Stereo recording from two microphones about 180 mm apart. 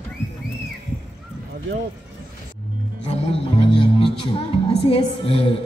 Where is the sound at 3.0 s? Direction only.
35° left (ahead or behind).